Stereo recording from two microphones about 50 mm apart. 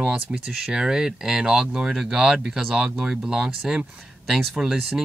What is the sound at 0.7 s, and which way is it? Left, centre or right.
Speech, centre.